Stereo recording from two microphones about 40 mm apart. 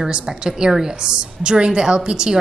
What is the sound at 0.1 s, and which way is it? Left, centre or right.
A woman's voice, right.